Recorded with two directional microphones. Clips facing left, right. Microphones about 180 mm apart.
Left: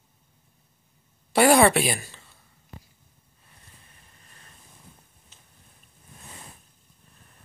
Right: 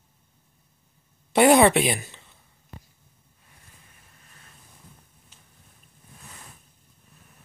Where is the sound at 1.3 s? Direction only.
20° right (ahead or behind).